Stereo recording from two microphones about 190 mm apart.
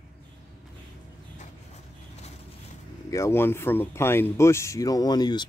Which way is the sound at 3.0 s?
15° left (ahead or behind).